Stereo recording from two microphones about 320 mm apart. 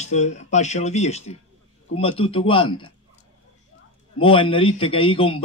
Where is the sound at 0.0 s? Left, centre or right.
Left.